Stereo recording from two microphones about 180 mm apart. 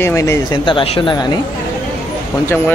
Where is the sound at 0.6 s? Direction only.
30° left (ahead or behind).